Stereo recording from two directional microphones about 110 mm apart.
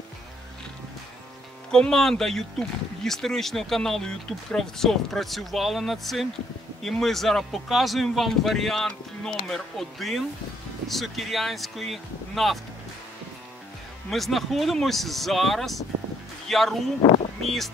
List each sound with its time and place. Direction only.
1.7 s speech: 5° left (ahead or behind)
14.1 s speech: centre (ahead or behind)
17.0 s speech: 60° left (ahead or behind)